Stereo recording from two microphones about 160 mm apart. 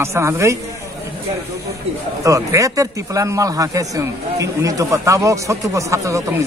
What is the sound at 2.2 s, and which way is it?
Speech, 20° right (ahead or behind).